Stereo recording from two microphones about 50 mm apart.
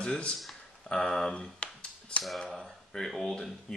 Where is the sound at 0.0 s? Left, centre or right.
Centre.